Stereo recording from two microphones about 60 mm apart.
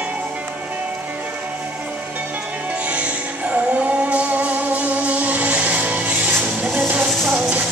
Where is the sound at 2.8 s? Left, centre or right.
Right.